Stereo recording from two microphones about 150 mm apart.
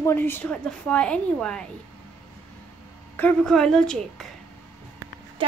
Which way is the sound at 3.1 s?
5° left (ahead or behind).